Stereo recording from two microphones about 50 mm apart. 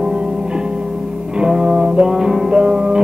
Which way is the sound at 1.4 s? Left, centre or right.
Centre.